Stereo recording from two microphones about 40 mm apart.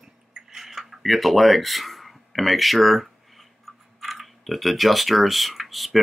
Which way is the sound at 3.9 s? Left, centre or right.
Centre.